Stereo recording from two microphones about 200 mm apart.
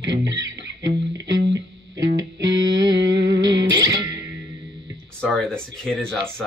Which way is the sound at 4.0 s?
15° right (ahead or behind).